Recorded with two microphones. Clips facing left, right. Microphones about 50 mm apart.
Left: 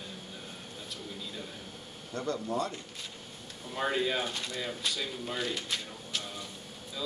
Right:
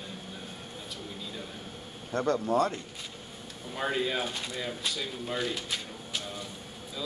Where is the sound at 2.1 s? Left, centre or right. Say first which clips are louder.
Right 6 dB; right.